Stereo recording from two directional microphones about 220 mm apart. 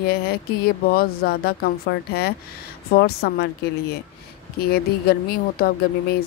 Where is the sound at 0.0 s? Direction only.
45° left (ahead or behind).